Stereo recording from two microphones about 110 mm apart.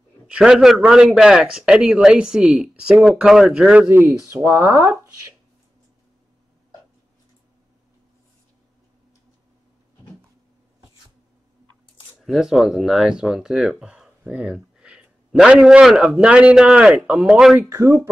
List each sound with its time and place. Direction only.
0.3 s speech: 5° right (ahead or behind)
3.9 s speech: 25° right (ahead or behind)
12.3 s speech: 5° right (ahead or behind)
17.6 s speech: 25° right (ahead or behind)